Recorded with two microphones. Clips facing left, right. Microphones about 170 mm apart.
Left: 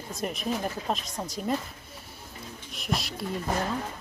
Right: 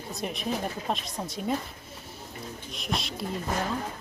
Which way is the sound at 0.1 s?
Centre (ahead or behind).